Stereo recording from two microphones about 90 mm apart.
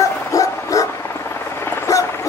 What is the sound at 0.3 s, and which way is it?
Bow-wow, 35° left (ahead or behind).